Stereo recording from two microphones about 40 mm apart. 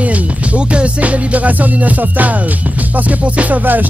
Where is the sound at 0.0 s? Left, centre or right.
Right.